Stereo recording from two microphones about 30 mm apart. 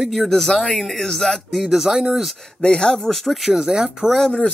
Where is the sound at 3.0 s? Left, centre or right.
Centre.